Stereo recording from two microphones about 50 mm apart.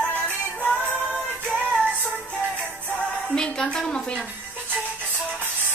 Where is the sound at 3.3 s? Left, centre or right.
Centre.